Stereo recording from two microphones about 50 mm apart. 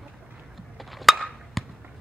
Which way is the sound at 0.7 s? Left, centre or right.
Centre.